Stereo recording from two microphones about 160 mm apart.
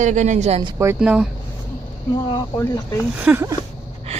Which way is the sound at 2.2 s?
25° left (ahead or behind).